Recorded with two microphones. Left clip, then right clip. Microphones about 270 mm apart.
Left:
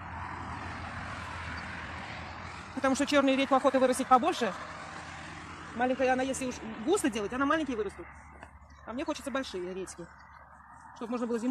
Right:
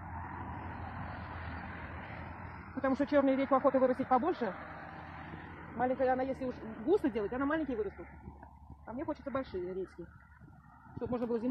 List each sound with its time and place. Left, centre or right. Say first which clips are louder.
2.8 s speech: left 3 dB; left
5.8 s speech: left 3 dB; left
8.8 s speech: left 4 dB; left
11.0 s speech: left 1 dB; left